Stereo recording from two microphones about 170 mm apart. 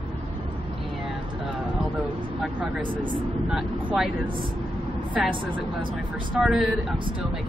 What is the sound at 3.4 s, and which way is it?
Speech, centre (ahead or behind).